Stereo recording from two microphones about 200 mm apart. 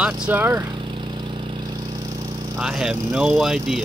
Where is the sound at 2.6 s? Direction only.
5° right (ahead or behind).